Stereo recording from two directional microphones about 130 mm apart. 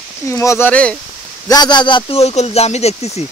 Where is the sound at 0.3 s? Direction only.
20° left (ahead or behind).